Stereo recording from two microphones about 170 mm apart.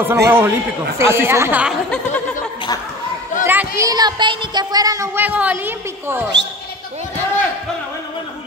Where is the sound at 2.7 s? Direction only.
20° left (ahead or behind).